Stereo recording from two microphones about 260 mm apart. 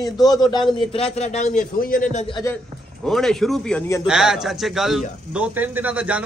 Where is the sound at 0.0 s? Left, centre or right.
Centre; by 2.2 s left.